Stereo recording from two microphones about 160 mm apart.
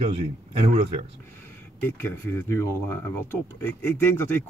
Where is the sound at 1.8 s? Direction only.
15° left (ahead or behind).